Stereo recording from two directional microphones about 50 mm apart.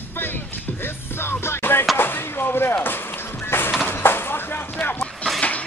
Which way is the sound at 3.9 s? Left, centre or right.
Left.